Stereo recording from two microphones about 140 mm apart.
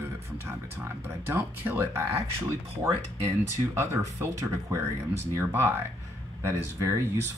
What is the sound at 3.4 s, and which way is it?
Speech, 20° right (ahead or behind).